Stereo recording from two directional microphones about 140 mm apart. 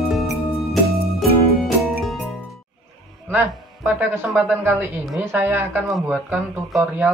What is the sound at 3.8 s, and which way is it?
Speech, 10° right (ahead or behind).